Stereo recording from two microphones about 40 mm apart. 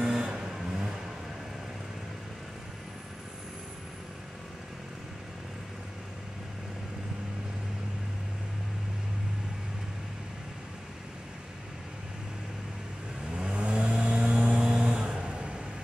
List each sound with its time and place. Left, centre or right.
0.2 s vehicle: centre
13.4 s vehicle: right
14.6 s a sound: centre